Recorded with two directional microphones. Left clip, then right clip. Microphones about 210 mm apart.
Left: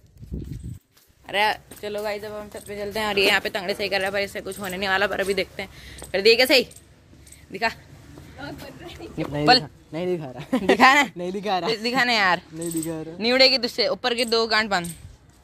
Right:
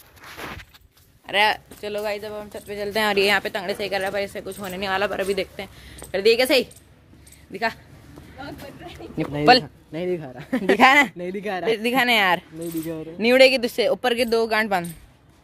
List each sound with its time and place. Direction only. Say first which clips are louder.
1.2 s speech: right 3 dB; 10° right (ahead or behind)
2.5 s a woman's voice: right 2 dB; 20° right (ahead or behind)
2.9 s speech: right 5 dB; 50° right (ahead or behind)
3.2 s a woman's voice: left 2 dB; 20° right (ahead or behind)
3.4 s a woman's voice: even; 5° left (ahead or behind)
9.2 s speech: right 2 dB; 35° right (ahead or behind)
10.1 s speech: left 1 dB; 20° left (ahead or behind)
10.8 s a woman's voice: right 1 dB; 20° right (ahead or behind)
11.1 s speech: left 2 dB; 20° left (ahead or behind)
11.7 s a woman's voice: right 5 dB; 20° right (ahead or behind)
12.8 s speech: even; 20° left (ahead or behind)
13.2 s a woman's voice: right 3 dB; 25° right (ahead or behind)